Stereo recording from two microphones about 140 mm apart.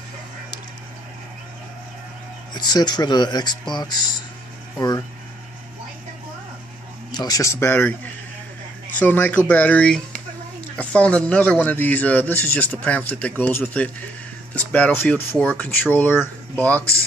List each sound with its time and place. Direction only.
2.5 s speech: 30° left (ahead or behind)
7.1 s speech: 30° left (ahead or behind); by 16.8 s 10° left (ahead or behind)